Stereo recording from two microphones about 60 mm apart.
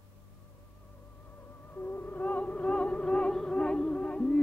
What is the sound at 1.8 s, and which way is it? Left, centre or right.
Music, left.